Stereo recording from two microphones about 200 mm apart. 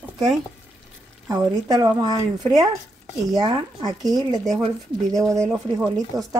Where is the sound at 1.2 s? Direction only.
15° right (ahead or behind).